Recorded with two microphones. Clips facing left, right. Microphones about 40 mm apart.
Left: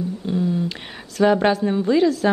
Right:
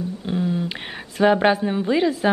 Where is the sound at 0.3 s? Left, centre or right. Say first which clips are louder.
Left 1 dB; right.